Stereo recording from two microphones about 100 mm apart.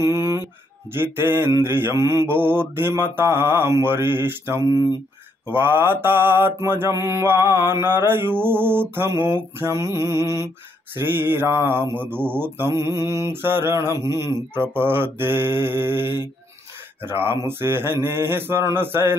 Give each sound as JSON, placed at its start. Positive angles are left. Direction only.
{"t": 0.0, "sound": "mantra", "side_deg": -30}
{"t": 11.1, "sound": "mantra", "side_deg": -20}